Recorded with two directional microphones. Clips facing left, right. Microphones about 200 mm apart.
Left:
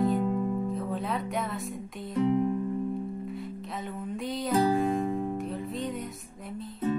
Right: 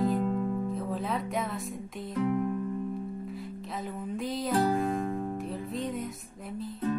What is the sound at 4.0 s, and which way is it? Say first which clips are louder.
Music: even; centre (ahead or behind).